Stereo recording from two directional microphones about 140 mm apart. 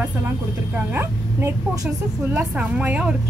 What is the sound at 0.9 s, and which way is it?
A woman's voice, 15° right (ahead or behind).